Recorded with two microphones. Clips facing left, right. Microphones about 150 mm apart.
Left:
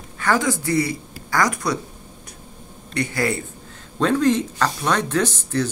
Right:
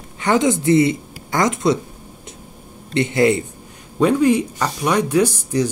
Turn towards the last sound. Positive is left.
turn(degrees=-10)  # may be behind; listen again after turning